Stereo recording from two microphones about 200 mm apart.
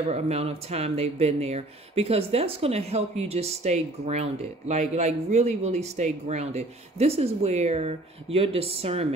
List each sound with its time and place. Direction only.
0.1 s speech: 30° right (ahead or behind)